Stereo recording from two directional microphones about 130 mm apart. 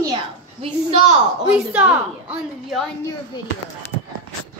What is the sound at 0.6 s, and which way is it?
Speech, 50° right (ahead or behind).